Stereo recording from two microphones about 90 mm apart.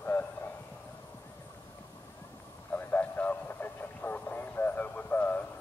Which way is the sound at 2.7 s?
20° left (ahead or behind).